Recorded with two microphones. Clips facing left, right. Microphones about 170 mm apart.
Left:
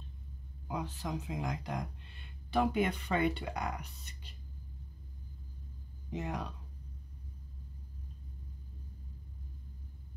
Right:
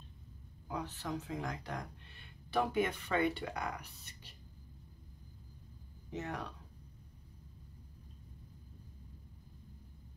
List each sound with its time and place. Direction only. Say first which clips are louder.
0.7 s speech: left 2 dB; 15° left (ahead or behind)
6.1 s speech: left 3 dB; 15° left (ahead or behind)